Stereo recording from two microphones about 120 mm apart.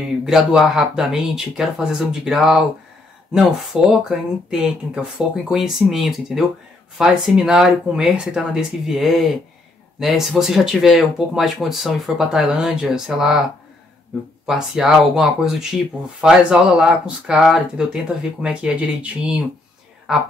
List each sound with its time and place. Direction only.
0.2 s speech: 5° right (ahead or behind)
5.5 s speech: 5° right (ahead or behind)
14.4 s speech: 5° right (ahead or behind)